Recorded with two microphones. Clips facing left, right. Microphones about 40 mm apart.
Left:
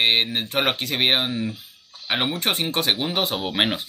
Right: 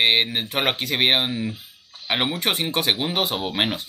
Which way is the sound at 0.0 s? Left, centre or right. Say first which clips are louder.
Right 1 dB; centre.